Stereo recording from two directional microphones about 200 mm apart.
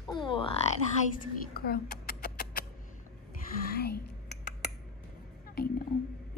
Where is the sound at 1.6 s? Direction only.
50° left (ahead or behind).